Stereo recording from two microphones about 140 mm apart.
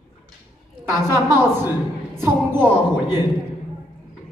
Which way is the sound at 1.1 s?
15° right (ahead or behind).